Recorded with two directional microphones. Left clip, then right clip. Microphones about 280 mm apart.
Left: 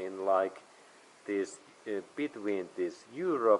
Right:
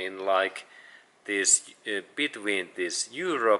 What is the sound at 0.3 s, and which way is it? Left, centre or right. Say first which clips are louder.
Speech: right 4 dB; centre.